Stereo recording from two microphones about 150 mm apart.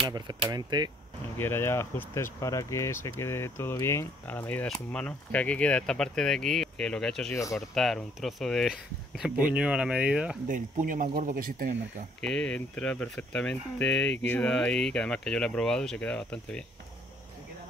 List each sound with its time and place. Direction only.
0.1 s speech: 30° right (ahead or behind)
1.4 s speech: 15° left (ahead or behind); by 10.3 s 5° right (ahead or behind)
10.5 s speech: 60° right (ahead or behind)
12.2 s speech: 5° left (ahead or behind)